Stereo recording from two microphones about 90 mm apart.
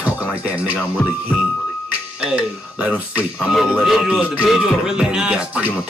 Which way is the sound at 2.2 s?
15° right (ahead or behind).